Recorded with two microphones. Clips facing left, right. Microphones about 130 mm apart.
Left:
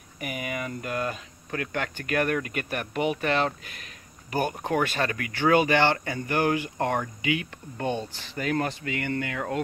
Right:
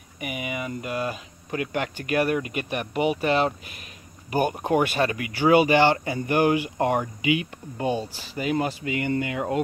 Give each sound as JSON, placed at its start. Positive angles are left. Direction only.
{"t": 0.2, "sound": "speech", "side_deg": -10}